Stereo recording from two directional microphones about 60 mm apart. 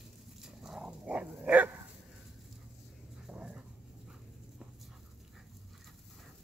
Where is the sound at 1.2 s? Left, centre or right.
Right.